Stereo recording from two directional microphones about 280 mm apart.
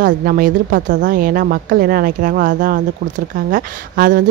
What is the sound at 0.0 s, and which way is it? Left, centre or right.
Speech, right.